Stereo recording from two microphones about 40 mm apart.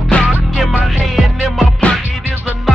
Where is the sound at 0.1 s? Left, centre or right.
Left.